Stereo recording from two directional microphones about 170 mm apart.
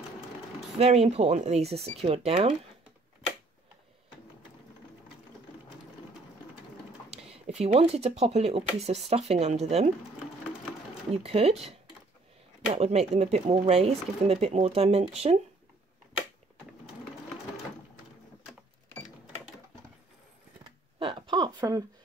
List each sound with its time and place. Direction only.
0.7 s speech: 40° right (ahead or behind)
7.4 s speech: 35° right (ahead or behind)
11.1 s speech: 35° right (ahead or behind)
12.7 s speech: 40° right (ahead or behind)
21.0 s a sound: 30° right (ahead or behind)